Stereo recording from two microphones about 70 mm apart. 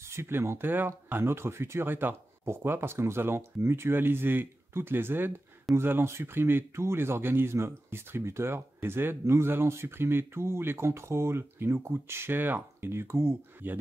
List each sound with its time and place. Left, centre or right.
0.0 s speech: right